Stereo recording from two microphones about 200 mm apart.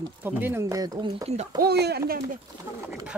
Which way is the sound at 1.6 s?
55° right (ahead or behind).